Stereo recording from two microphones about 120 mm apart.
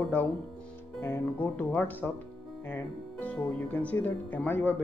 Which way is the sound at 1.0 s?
20° left (ahead or behind).